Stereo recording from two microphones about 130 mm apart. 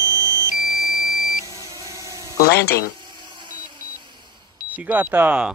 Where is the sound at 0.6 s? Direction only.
25° left (ahead or behind).